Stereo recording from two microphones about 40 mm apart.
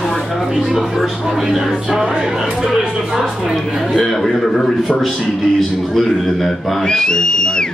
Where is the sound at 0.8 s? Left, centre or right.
Centre.